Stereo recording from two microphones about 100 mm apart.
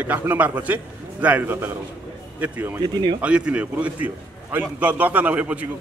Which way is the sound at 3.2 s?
10° right (ahead or behind).